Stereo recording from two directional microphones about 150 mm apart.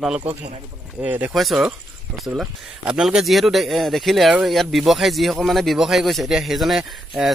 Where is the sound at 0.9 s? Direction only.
10° right (ahead or behind).